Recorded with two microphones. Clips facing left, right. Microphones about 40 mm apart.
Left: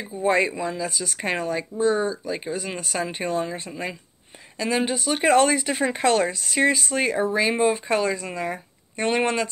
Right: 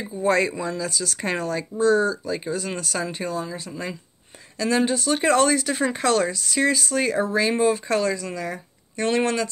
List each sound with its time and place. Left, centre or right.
0.2 s speech: centre
3.3 s speech: left
3.6 s speech: left